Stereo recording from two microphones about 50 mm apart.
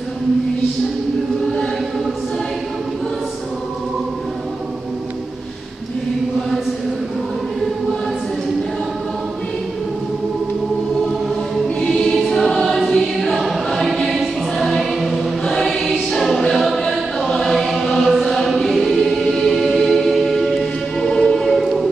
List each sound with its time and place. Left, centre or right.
11.9 s choir: centre
19.6 s music: centre
21.0 s choir: centre
21.5 s music: centre